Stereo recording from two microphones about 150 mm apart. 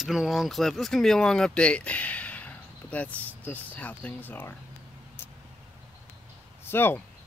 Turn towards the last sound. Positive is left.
turn(degrees=15)  # may be behind; listen again after turning